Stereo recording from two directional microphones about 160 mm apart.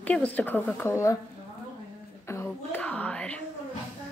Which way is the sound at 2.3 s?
15° left (ahead or behind).